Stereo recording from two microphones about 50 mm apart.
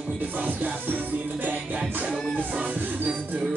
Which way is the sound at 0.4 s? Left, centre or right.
Right.